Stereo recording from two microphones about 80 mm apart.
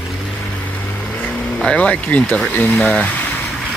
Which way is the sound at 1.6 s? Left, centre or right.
Centre.